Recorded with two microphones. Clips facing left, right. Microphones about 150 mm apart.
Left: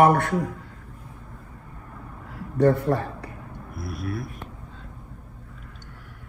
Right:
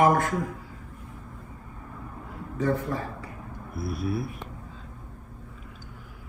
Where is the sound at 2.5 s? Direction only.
70° left (ahead or behind).